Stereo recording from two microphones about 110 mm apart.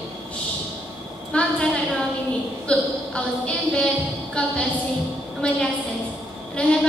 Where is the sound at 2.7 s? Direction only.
10° left (ahead or behind).